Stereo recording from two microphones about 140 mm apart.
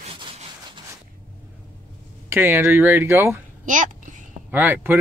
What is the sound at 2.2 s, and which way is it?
Speech, 15° right (ahead or behind).